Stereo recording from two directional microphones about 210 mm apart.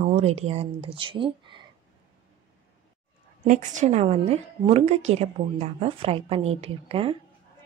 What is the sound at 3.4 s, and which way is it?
A woman's voice, 35° right (ahead or behind).